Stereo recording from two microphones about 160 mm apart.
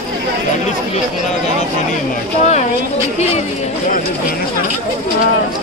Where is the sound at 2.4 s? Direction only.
45° left (ahead or behind).